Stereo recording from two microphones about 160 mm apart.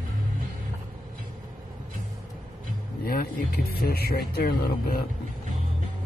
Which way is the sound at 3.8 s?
75° left (ahead or behind).